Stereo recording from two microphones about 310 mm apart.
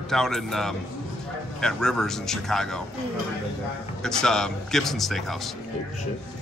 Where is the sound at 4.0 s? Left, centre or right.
Centre.